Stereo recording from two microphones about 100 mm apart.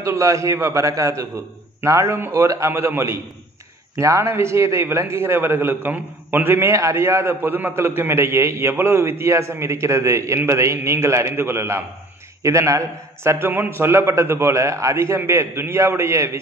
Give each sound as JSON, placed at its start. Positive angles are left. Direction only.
{"t": 0.0, "sound": "a man's voice", "side_deg": -30}